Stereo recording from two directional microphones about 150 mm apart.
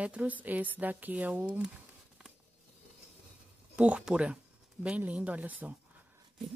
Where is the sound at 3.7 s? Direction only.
10° right (ahead or behind).